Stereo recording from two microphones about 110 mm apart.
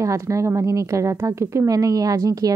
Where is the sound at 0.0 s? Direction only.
30° right (ahead or behind).